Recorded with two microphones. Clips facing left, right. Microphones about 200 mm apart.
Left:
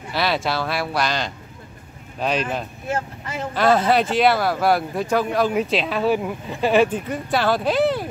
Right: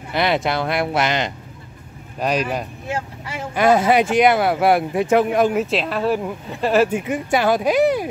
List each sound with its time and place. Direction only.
0.1 s speech: 20° right (ahead or behind)
2.1 s speech: 10° right (ahead or behind)
5.5 s speech: centre (ahead or behind)
6.9 s speech: 15° right (ahead or behind)